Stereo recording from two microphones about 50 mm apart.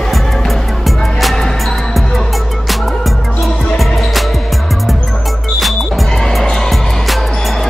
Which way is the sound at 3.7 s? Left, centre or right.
Centre.